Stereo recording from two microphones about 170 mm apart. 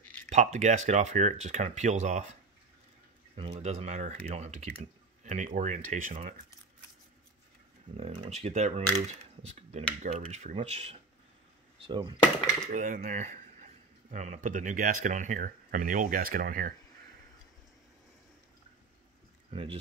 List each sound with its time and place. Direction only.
0.3 s speech: 45° right (ahead or behind)
3.3 s speech: 35° right (ahead or behind)
8.0 s speech: 40° right (ahead or behind)
8.9 s cutlery: 40° right (ahead or behind)
10.0 s speech: 40° right (ahead or behind)
11.8 s speech: 30° right (ahead or behind)
12.7 s speech: 50° right (ahead or behind)
19.5 s speech: 35° right (ahead or behind)